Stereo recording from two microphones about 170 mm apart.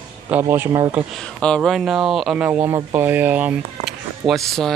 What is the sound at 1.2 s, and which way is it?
Speech, 5° left (ahead or behind).